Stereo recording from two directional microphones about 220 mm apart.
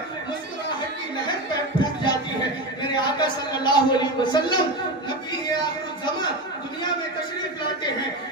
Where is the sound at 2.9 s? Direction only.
20° left (ahead or behind).